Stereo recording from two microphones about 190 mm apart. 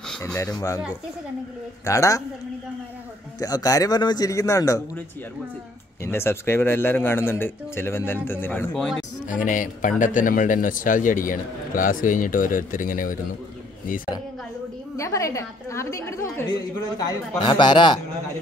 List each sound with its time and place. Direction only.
0.4 s a man's voice: 20° left (ahead or behind)
1.9 s a man's voice: 15° left (ahead or behind)
3.3 s a man's voice: 20° left (ahead or behind)
6.0 s a man's voice: 10° left (ahead or behind)
9.3 s a man's voice: 45° left (ahead or behind)
15.0 s a man's voice: 15° left (ahead or behind)